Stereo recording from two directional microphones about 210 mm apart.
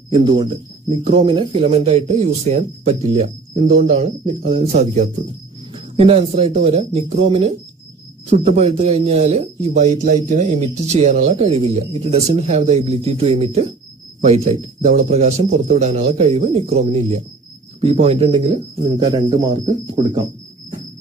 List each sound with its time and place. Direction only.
0.1 s a man's voice: 20° right (ahead or behind)